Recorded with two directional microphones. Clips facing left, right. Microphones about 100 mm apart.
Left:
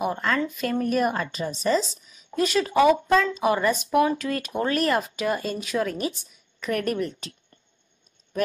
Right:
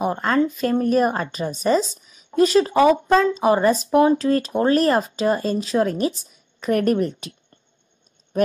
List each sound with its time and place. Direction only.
0.0 s speech: 35° right (ahead or behind)
1.5 s speech: 50° right (ahead or behind)
2.3 s speech: 35° right (ahead or behind)